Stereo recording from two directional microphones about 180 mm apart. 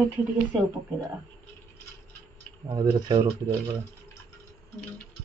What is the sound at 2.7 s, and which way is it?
Speech, 20° right (ahead or behind).